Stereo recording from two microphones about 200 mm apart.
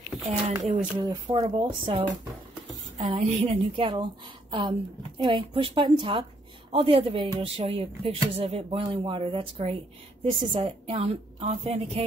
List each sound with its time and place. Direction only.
0.7 s speech: 25° right (ahead or behind)